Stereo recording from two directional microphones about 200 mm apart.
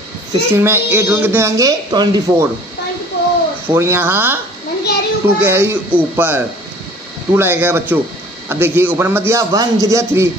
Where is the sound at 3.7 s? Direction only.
10° right (ahead or behind).